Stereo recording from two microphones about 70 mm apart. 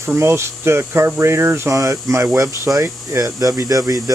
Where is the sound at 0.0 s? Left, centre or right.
Right.